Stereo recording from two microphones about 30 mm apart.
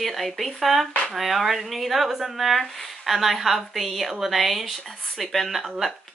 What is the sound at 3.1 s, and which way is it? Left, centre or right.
A woman's voice, centre.